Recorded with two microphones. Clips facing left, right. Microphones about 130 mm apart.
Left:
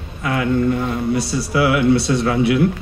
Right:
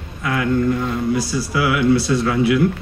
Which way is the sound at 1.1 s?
65° left (ahead or behind).